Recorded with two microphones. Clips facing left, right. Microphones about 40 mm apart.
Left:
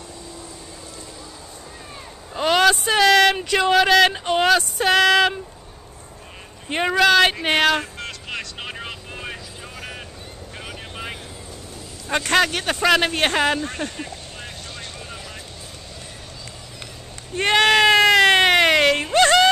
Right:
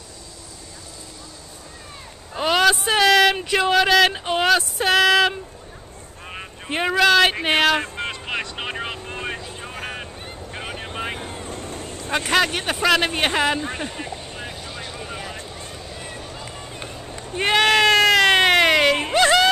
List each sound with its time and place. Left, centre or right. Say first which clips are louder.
2.3 s a sound: left 1 dB; centre
3.5 s speech: left 1 dB; centre
6.7 s speech: even; centre
7.8 s vehicle: right 4 dB; right
10.5 s vehicle: right 4 dB; right
10.8 s vehicle: right 4 dB; centre
11.1 s vehicle: right 6 dB; right
12.1 s a man's voice: left 1 dB; centre
12.8 s speech: left 1 dB; centre
13.6 s vehicle: even; centre
17.3 s sheep: left 1 dB; centre
19.1 s music: left 2 dB; centre